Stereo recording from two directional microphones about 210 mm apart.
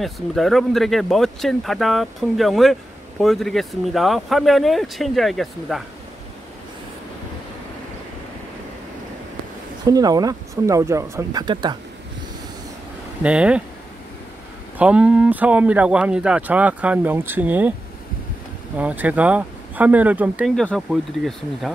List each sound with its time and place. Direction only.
0.0 s speech: centre (ahead or behind)
9.8 s speech: 15° right (ahead or behind)
13.2 s speech: 5° right (ahead or behind)
14.8 s speech: 5° right (ahead or behind)
18.8 s speech: 5° right (ahead or behind)